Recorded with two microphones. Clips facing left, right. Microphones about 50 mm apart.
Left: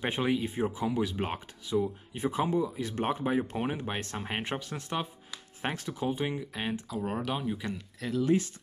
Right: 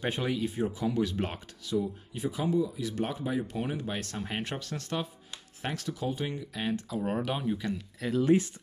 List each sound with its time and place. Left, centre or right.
0.0 s speech: left
0.8 s speech: centre
2.1 s speech: left; by 6.8 s centre
6.9 s speech: centre
7.5 s speech: centre
8.0 s speech: centre